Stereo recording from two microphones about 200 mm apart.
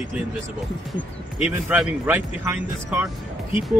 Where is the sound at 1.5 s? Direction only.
5° right (ahead or behind).